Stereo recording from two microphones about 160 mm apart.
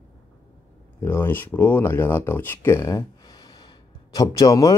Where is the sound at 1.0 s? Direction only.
15° left (ahead or behind).